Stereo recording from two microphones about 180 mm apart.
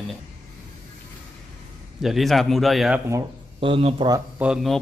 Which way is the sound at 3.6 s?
30° right (ahead or behind).